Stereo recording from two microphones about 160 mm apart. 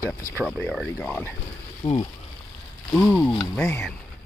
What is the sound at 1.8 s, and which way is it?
Speech, 25° left (ahead or behind).